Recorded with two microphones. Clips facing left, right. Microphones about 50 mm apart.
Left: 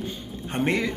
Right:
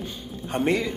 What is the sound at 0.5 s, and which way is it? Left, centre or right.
Speech, left.